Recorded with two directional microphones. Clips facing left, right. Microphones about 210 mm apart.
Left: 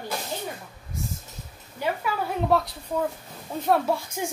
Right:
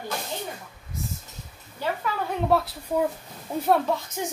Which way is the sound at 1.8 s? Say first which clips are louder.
Left 1 dB; 15° left (ahead or behind).